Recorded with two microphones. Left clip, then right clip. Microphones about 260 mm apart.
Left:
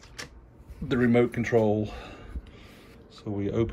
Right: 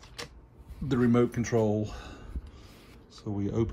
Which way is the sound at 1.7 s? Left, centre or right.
Centre.